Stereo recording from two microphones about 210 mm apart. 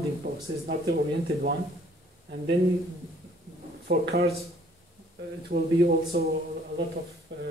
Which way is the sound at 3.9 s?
50° right (ahead or behind).